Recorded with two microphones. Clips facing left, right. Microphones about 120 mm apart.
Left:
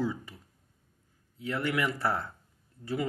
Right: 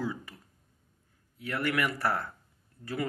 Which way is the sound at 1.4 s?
20° left (ahead or behind).